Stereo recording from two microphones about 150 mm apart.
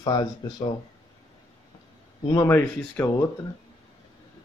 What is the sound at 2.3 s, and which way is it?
Speech, 20° left (ahead or behind).